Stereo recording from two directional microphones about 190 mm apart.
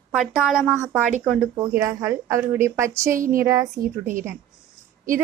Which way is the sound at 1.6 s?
15° right (ahead or behind).